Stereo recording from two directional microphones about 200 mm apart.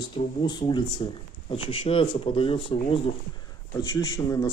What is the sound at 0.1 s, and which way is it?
Speech, 25° left (ahead or behind).